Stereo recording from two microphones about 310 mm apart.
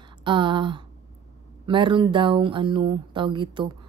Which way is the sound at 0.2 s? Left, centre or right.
Centre.